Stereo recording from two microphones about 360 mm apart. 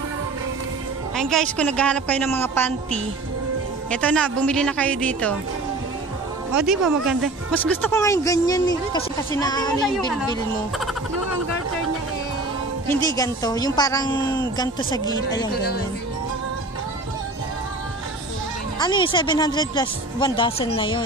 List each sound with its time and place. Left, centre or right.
1.1 s speech: centre
6.5 s a woman's voice: centre
12.8 s a woman's voice: centre
15.5 s speech: left
18.8 s a woman's voice: centre